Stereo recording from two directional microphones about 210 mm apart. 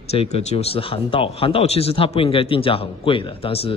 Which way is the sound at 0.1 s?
30° left (ahead or behind).